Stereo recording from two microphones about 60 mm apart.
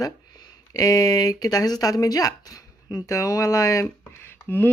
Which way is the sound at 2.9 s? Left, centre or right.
Left.